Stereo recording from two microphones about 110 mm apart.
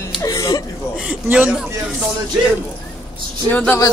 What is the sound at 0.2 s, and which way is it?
Chuckle, 30° left (ahead or behind).